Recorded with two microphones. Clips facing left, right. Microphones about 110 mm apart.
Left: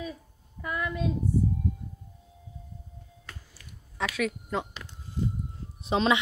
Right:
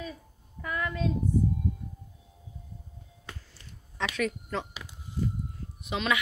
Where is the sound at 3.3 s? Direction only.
20° right (ahead or behind).